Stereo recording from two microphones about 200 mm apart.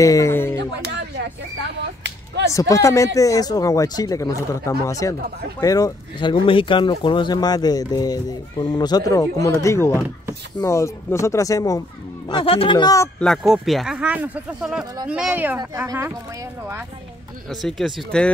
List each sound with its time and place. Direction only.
0.0 s speech: 15° left (ahead or behind)
0.6 s a sound: 60° right (ahead or behind)
2.5 s speech: 15° left (ahead or behind)
13.2 s speech: centre (ahead or behind); by 15.8 s 15° right (ahead or behind)
17.5 s speech: centre (ahead or behind)